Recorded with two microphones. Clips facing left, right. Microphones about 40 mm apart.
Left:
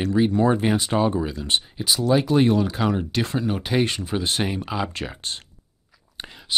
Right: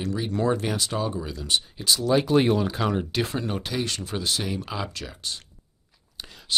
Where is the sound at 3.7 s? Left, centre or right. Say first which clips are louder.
Left 6 dB; left.